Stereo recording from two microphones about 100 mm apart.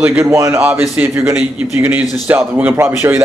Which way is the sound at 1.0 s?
15° right (ahead or behind).